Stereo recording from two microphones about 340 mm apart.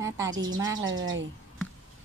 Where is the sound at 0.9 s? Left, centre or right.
Right.